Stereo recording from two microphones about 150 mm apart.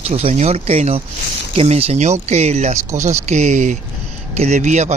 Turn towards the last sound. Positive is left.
turn(degrees=-50)  # may be behind; listen again after turning